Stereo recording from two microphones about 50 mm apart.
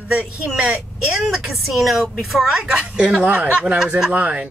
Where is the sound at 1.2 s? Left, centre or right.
Centre.